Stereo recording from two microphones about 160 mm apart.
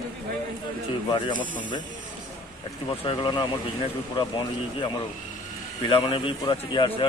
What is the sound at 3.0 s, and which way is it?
Speech, 30° left (ahead or behind).